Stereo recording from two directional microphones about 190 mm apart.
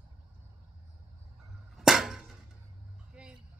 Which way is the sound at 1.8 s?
Centre (ahead or behind).